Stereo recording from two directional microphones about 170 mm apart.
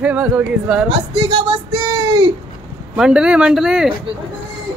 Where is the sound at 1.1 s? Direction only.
30° right (ahead or behind).